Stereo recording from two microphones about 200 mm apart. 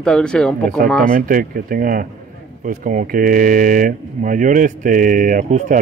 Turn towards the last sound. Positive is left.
turn(degrees=-40)  # may be behind; listen again after turning